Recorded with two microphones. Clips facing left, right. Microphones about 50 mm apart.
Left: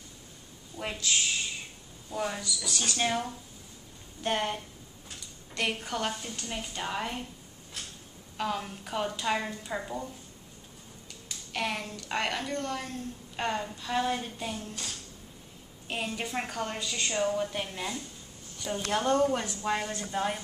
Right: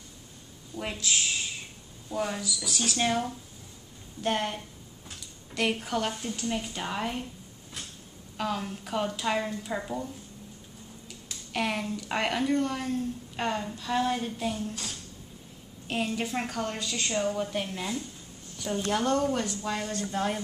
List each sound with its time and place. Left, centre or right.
0.7 s a woman's voice: centre
8.4 s a woman's voice: centre
11.2 s a woman's voice: centre
20.1 s speech: centre